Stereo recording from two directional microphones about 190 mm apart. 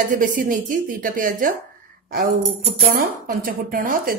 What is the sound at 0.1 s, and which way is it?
Speech, 45° right (ahead or behind).